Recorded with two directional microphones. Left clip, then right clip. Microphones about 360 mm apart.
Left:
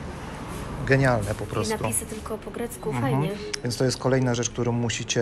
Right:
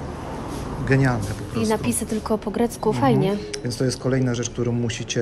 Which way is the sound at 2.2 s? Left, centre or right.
Right.